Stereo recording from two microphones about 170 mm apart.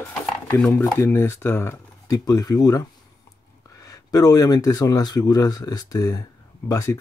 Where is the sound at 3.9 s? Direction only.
20° left (ahead or behind).